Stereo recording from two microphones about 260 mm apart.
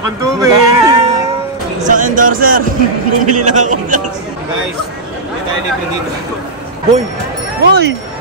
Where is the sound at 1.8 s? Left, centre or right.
Right.